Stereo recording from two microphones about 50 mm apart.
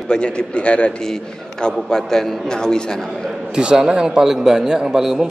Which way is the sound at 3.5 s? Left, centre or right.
Centre.